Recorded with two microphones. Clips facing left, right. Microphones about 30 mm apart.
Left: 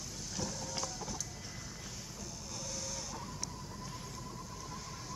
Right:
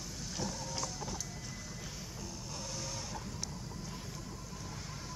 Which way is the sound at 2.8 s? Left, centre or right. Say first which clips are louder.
Right 1 dB; right.